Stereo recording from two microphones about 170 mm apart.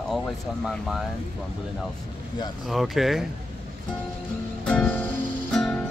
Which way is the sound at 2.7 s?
Centre (ahead or behind).